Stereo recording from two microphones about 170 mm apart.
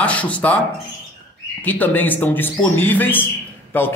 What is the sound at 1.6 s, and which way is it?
A man's voice, 10° left (ahead or behind).